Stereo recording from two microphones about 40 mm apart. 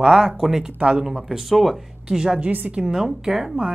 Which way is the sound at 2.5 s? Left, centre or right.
Right.